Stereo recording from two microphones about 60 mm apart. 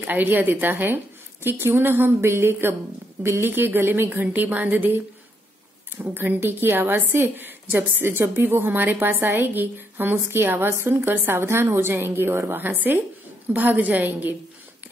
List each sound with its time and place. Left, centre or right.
0.0 s a woman's voice: right
4.3 s a woman's voice: right